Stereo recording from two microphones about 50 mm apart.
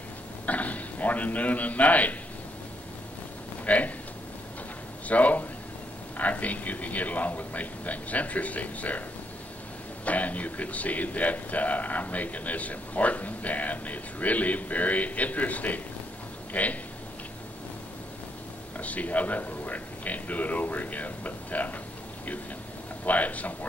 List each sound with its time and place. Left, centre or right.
0.5 s a man's voice: left
3.6 s speech: left
5.0 s a man's voice: left
10.0 s speech: left
18.8 s speech: left
23.0 s speech: left